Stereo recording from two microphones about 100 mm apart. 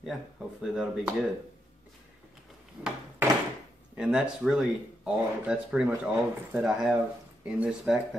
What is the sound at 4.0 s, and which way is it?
Speech, 10° right (ahead or behind).